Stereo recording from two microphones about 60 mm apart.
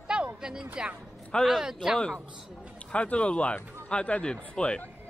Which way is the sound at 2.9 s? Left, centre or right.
Centre.